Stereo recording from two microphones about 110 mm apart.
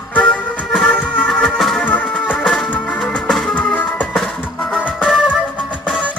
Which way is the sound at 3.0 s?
5° left (ahead or behind).